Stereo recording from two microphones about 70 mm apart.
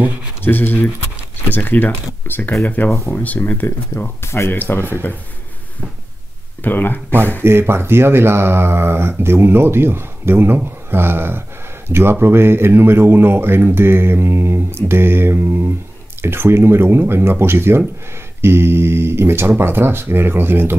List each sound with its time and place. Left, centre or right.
0.4 s speech: left
4.2 s speech: left
6.6 s speech: left
7.4 s speech: right